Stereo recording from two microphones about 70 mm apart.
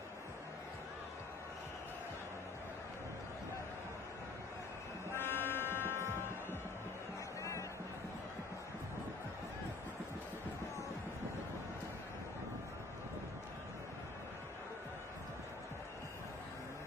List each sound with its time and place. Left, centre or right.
5.1 s buzzer: left